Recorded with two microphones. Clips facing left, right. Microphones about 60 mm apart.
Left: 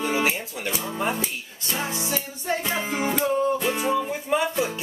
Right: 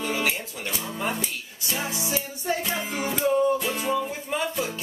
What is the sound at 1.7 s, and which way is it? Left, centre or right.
Music, centre.